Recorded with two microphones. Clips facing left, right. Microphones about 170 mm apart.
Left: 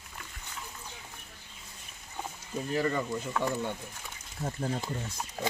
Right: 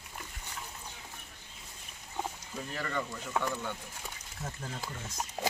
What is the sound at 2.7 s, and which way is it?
Speech, 30° left (ahead or behind).